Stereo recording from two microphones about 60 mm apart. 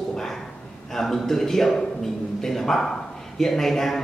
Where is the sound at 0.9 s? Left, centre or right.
Centre.